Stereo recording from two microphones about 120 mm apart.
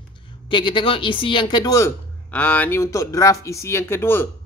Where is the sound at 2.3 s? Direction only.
15° left (ahead or behind).